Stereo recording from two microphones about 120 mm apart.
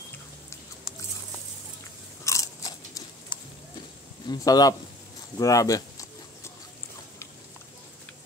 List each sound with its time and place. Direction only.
2.2 s biting: 25° left (ahead or behind)
4.3 s a man's voice: 30° left (ahead or behind)
5.4 s a sound: 30° left (ahead or behind)